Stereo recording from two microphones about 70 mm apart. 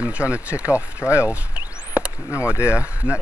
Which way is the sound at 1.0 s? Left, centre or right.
Left.